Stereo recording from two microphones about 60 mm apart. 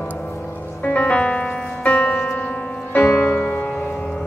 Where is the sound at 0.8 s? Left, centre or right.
Left.